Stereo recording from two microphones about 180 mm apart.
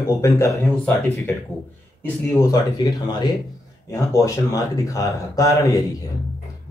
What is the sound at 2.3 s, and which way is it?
Speech, 20° left (ahead or behind).